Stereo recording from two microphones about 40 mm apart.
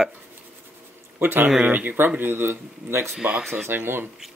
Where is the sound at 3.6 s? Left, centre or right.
Right.